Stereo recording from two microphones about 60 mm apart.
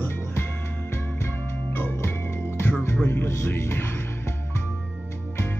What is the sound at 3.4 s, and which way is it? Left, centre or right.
Music, left.